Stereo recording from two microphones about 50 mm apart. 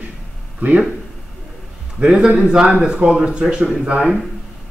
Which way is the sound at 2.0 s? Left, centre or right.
Centre.